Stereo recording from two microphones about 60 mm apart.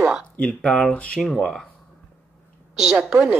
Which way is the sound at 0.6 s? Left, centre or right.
Centre.